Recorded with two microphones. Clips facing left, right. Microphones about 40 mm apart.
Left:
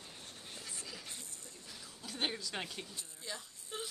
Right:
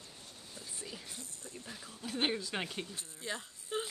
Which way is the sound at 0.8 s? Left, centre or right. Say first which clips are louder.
Right 1 dB; right.